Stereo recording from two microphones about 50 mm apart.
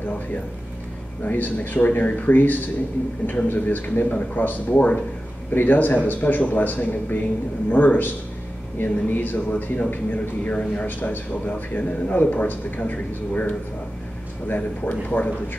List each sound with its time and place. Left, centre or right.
1.2 s speech: left
10.6 s speech: centre
10.9 s speech: left